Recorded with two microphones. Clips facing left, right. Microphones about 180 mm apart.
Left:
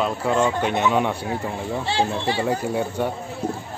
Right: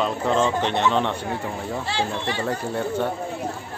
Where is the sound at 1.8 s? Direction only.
30° left (ahead or behind).